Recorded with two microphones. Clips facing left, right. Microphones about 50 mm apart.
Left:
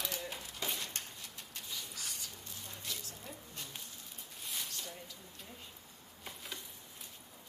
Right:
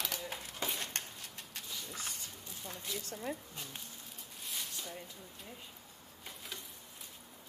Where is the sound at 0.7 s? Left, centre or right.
Right.